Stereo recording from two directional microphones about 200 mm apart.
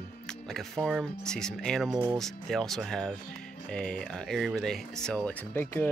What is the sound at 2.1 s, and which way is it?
Speech, centre (ahead or behind).